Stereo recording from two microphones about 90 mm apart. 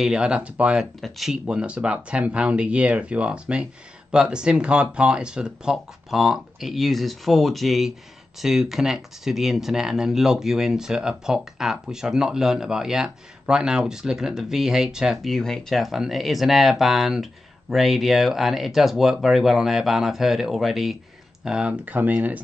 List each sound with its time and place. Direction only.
0.0 s speech: 10° right (ahead or behind)
1.0 s speech: centre (ahead or behind)
15.3 s speech: 5° left (ahead or behind); by 22.4 s 20° right (ahead or behind)